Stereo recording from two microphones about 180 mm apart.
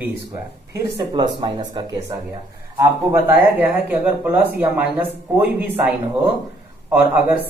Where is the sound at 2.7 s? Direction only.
10° right (ahead or behind).